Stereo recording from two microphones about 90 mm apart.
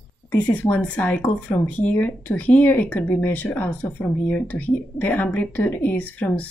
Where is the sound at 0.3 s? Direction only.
15° left (ahead or behind).